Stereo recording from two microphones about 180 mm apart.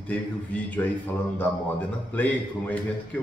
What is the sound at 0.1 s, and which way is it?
Speech, 10° left (ahead or behind).